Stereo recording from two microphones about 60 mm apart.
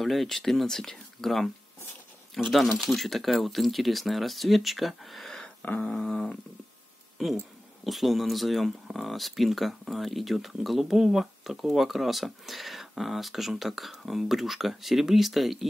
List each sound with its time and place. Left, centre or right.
0.0 s speech: centre
2.5 s speech: centre
5.6 s beatboxing: left
5.9 s a sound: centre
7.2 s speech: centre